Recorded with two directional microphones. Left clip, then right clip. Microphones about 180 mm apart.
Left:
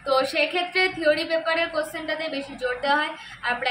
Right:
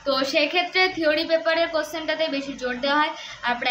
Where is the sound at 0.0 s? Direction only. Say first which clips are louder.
Even; 10° right (ahead or behind).